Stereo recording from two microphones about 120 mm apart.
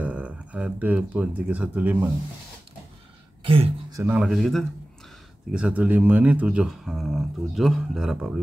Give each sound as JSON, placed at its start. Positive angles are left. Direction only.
{"t": 0.0, "sound": "speech", "side_deg": -10}
{"t": 3.4, "sound": "speech", "side_deg": -50}
{"t": 4.0, "sound": "speech", "side_deg": -15}
{"t": 4.3, "sound": "speech", "side_deg": 0}
{"t": 5.5, "sound": "speech", "side_deg": -10}